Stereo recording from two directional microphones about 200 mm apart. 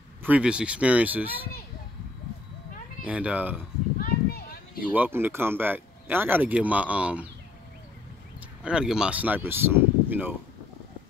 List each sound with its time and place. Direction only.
0.2 s speech: 5° right (ahead or behind)
3.1 s speech: 5° right (ahead or behind)
4.0 s a sound: 45° left (ahead or behind)
4.9 s speech: 10° right (ahead or behind)
8.6 s speech: 5° right (ahead or behind)